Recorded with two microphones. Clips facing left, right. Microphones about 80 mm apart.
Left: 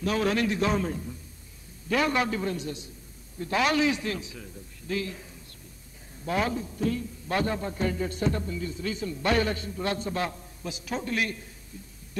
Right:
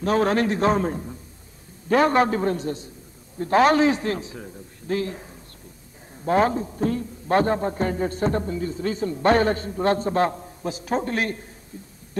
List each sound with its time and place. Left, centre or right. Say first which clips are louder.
0.0 s a man's voice: right 5 dB; right